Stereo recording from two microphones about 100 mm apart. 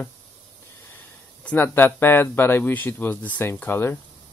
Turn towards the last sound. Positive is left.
turn(degrees=20)  # may be behind; listen again after turning